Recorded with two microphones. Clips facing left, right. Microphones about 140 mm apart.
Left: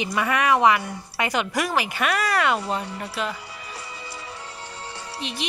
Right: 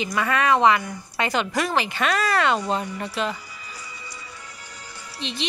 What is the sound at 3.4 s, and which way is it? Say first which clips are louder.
Music: left 3 dB; 70° left (ahead or behind).